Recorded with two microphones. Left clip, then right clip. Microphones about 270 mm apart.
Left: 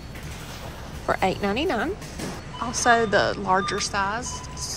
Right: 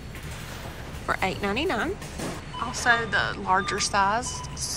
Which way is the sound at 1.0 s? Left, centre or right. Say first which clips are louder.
Left 3 dB; centre.